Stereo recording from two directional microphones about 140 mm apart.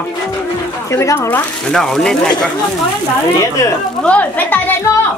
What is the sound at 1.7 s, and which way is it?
Speech, 5° left (ahead or behind).